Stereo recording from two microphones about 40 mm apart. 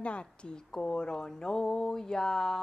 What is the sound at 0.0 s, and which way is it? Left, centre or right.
Mantra, left.